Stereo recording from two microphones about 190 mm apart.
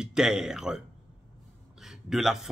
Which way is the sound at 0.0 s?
5° right (ahead or behind).